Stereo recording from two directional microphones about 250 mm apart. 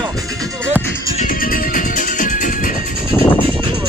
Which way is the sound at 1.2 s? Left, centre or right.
Left.